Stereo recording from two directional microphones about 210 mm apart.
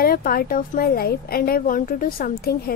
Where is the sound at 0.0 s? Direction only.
45° left (ahead or behind).